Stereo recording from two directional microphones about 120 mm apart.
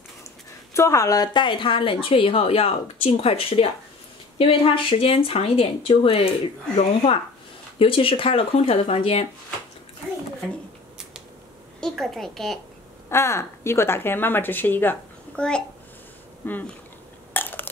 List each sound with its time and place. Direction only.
0.7 s speech: 25° left (ahead or behind); by 9.3 s 55° left (ahead or behind)
11.8 s a woman's voice: centre (ahead or behind)
13.1 s a woman's voice: 25° left (ahead or behind)
17.3 s a sound: 15° left (ahead or behind)